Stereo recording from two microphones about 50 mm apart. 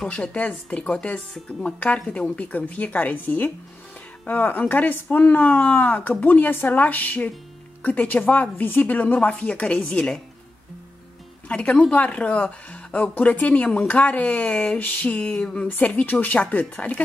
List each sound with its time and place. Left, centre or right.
0.1 s a woman's voice: left
11.4 s a woman's voice: left